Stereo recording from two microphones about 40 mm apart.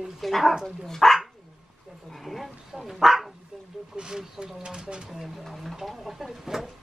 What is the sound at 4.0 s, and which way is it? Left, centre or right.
Speech, centre.